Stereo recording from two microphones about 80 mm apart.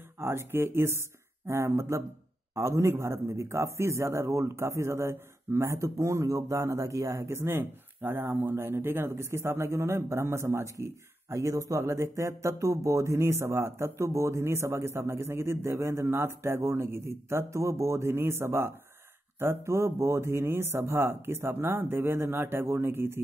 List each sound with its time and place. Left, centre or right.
0.2 s a man's voice: right